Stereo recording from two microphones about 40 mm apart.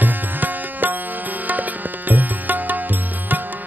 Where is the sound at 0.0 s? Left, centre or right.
Right.